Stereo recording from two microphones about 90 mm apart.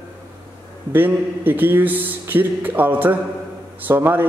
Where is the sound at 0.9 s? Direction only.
20° right (ahead or behind).